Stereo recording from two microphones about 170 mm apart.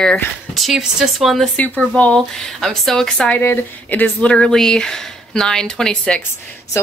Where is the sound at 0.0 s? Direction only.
5° left (ahead or behind).